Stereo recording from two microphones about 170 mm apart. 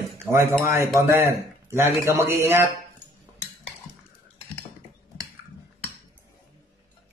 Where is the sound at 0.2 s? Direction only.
15° right (ahead or behind).